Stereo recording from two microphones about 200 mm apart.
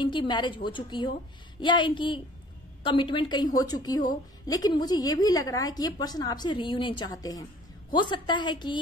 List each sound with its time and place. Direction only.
0.0 s a woman's voice: 25° left (ahead or behind)